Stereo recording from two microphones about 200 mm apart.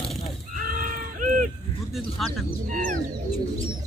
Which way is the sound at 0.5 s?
40° right (ahead or behind).